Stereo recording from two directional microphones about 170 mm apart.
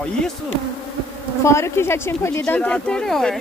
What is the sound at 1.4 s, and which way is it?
Speech, 15° left (ahead or behind).